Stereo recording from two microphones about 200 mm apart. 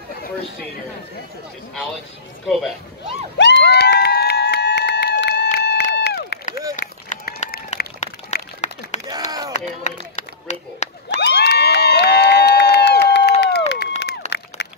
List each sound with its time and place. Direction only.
3.3 s crowd: 55° left (ahead or behind)
6.8 s run: 40° left (ahead or behind)
8.0 s a sound: 35° left (ahead or behind)
9.0 s a sound: 20° right (ahead or behind)
9.5 s run: 35° left (ahead or behind)
11.1 s crowd: 55° left (ahead or behind)